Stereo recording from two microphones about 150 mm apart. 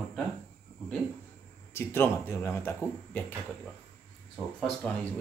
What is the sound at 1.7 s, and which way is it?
Speech, 15° left (ahead or behind).